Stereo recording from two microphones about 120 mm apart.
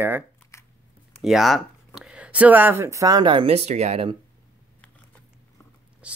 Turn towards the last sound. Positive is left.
turn(degrees=-10)  # may be behind; listen again after turning